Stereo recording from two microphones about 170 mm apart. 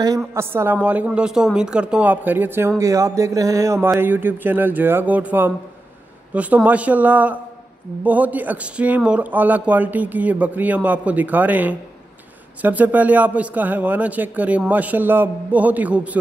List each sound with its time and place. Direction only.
0.0 s speech: 20° right (ahead or behind)